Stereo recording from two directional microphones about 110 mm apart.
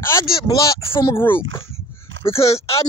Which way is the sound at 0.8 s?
55° left (ahead or behind).